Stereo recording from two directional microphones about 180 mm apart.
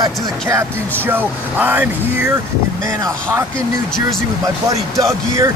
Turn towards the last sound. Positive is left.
turn(degrees=-15)  # may be behind; listen again after turning